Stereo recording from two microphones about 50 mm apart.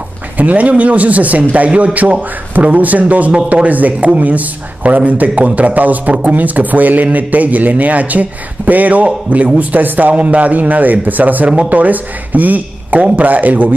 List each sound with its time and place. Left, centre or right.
0.4 s a man's voice: right
3.3 s a man's voice: centre
3.6 s a man's voice: right